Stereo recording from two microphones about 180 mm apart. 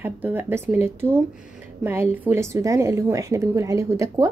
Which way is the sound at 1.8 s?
10° right (ahead or behind).